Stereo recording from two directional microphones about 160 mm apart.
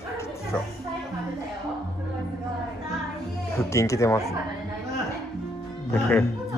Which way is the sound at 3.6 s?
20° left (ahead or behind).